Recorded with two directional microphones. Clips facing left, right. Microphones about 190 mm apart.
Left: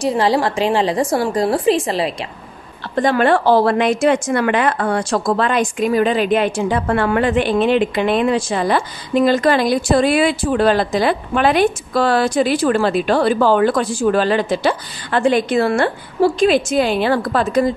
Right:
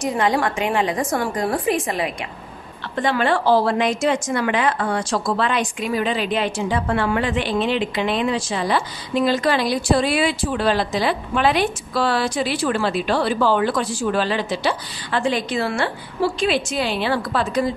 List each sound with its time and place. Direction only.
0.0 s a woman's voice: 30° left (ahead or behind)
3.0 s a woman's voice: 50° left (ahead or behind)